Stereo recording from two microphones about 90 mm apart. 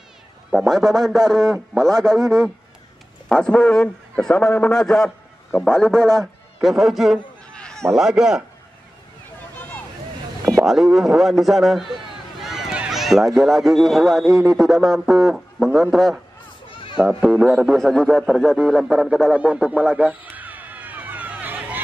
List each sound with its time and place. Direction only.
0.7 s a man's voice: 5° left (ahead or behind)
7.5 s a sound: 10° left (ahead or behind)
7.9 s speech: 5° right (ahead or behind)
10.6 s speech: centre (ahead or behind)
12.4 s run: 5° right (ahead or behind)
12.9 s speech: centre (ahead or behind)
17.2 s speech: 10° right (ahead or behind)
19.3 s speech: 15° right (ahead or behind)
20.0 s a sound: 15° right (ahead or behind)